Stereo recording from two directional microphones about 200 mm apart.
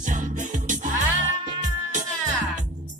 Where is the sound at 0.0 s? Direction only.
40° right (ahead or behind).